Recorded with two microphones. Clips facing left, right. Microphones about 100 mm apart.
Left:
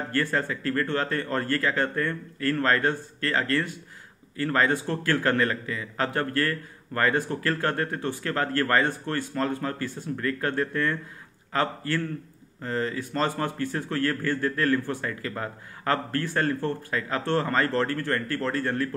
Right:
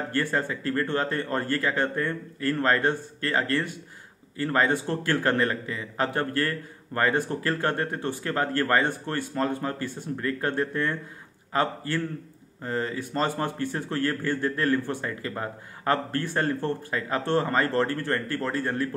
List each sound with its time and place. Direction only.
0.1 s a man's voice: 25° right (ahead or behind)